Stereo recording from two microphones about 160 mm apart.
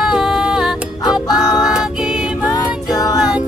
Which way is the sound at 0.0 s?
5° right (ahead or behind).